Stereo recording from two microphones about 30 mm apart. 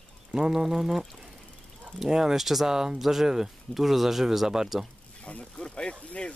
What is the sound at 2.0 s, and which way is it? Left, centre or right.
Speech, centre.